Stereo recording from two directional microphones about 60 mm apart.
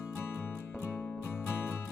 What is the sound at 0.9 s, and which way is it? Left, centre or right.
Music, left.